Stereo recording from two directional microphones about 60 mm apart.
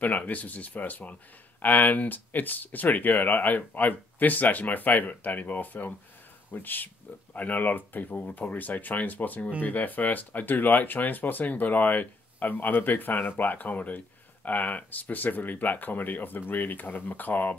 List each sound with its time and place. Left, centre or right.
0.0 s speech: left